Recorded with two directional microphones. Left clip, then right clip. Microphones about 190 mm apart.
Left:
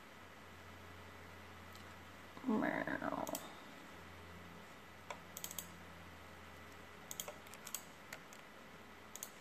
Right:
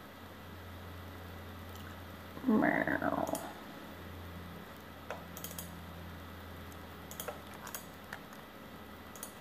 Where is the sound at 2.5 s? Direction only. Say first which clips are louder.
Right 8 dB; 25° left (ahead or behind).